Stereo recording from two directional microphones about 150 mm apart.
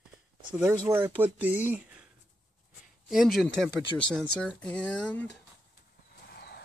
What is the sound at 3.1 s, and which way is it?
Speech, centre (ahead or behind).